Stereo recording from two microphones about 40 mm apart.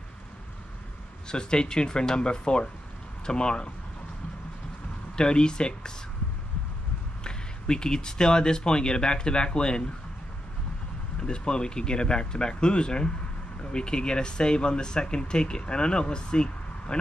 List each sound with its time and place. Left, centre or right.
1.3 s speech: left
5.1 s speech: left
7.2 s speech: left
11.1 s speech: left